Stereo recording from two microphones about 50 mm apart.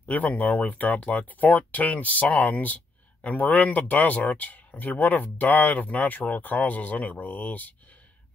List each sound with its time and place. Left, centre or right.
0.1 s speech: left